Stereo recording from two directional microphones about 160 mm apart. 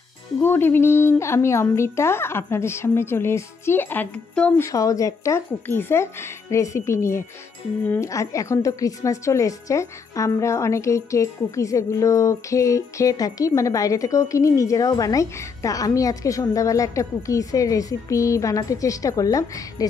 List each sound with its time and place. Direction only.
0.4 s a woman's voice: 15° left (ahead or behind)
4.6 s a woman's voice: 20° left (ahead or behind)